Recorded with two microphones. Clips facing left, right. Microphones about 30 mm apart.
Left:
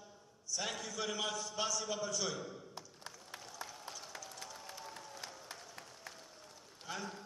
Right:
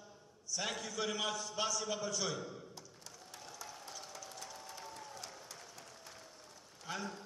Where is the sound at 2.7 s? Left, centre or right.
Left.